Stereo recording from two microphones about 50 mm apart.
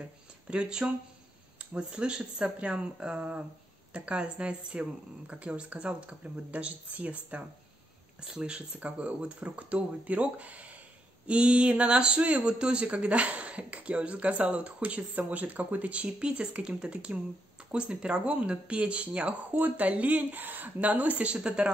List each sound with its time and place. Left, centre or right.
0.0 s speech: right
8.2 s speech: centre